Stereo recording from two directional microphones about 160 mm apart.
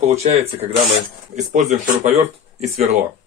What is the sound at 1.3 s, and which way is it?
Speech, 50° right (ahead or behind).